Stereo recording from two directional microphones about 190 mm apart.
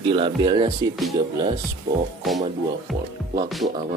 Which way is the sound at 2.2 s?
Centre (ahead or behind).